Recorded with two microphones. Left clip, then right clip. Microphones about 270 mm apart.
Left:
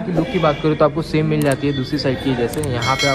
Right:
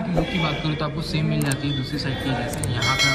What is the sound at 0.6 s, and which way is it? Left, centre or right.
Speech, centre.